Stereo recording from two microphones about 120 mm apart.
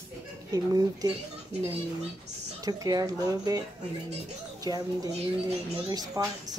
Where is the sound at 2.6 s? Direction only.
30° right (ahead or behind).